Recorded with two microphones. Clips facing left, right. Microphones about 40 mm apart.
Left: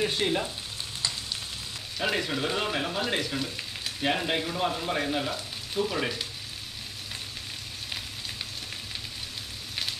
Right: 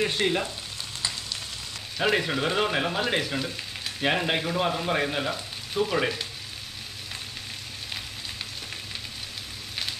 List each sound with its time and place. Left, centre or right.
0.0 s frying: centre
2.0 s speech: centre